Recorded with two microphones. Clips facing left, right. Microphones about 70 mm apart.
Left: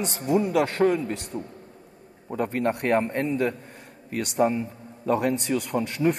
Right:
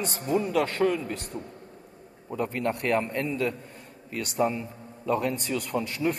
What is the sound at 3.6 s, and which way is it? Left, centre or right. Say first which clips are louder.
A man's voice: left 1 dB; left.